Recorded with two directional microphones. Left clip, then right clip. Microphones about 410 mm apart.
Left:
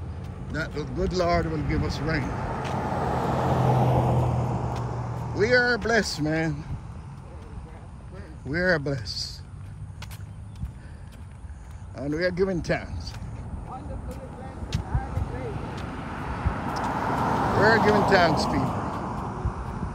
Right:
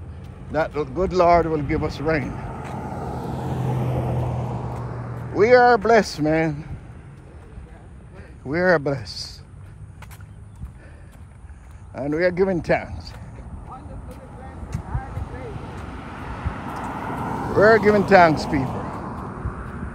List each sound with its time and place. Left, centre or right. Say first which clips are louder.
0.2 s speech: right 9 dB; centre
2.2 s vehicle: left 2 dB; centre
3.5 s vehicle: left 4 dB; centre
5.4 s speech: right 8 dB; centre
8.5 s speech: right 5 dB; centre
11.9 s speech: right 6 dB; centre
13.7 s vehicle: left 1 dB; centre
17.6 s speech: right 6 dB; centre
18.7 s vehicle: even; left